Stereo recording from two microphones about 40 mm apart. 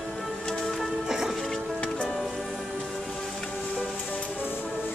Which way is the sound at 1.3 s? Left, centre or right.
Centre.